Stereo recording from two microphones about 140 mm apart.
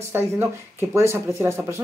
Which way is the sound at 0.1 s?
15° right (ahead or behind).